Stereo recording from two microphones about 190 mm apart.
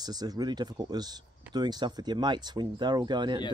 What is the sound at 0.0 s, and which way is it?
Speech, 20° right (ahead or behind).